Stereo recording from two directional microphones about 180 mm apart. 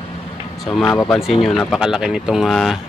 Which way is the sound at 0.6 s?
5° left (ahead or behind).